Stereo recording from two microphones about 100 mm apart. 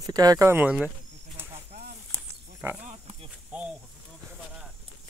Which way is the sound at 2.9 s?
85° right.